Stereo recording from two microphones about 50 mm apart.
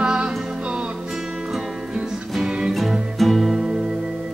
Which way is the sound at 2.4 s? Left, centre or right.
Centre.